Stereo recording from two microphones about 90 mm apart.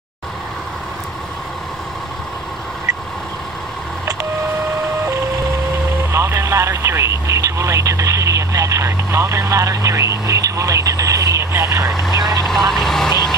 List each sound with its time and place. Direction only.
6.1 s vehicle: 30° right (ahead or behind)
12.2 s vehicle: 45° right (ahead or behind)
12.4 s speech: 5° left (ahead or behind)